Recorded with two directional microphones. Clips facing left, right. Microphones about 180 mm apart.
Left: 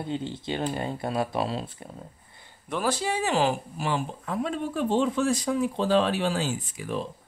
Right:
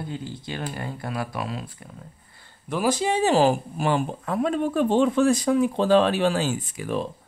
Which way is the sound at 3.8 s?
55° right (ahead or behind).